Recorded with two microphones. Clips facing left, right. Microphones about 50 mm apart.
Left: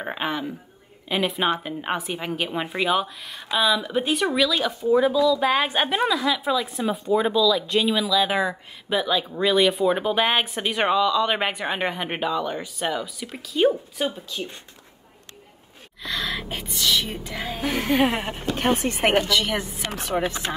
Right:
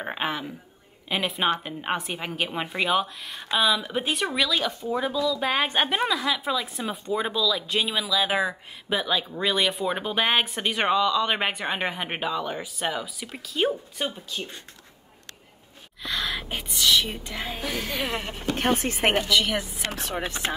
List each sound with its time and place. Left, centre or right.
0.0 s a woman's voice: centre
16.0 s gasp: centre
16.5 s a woman's voice: centre
17.7 s speech: left
18.0 s speech: left
18.8 s speech: left
20.1 s a woman's voice: centre